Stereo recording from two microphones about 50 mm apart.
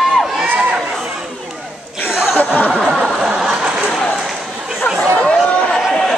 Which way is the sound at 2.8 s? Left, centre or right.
Centre.